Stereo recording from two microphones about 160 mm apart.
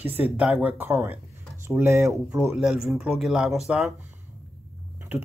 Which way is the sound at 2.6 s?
5° right (ahead or behind).